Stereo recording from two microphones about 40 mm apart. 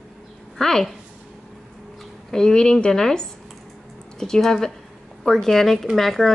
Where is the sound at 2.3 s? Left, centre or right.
Centre.